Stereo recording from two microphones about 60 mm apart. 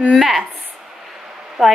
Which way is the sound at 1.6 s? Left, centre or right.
Centre.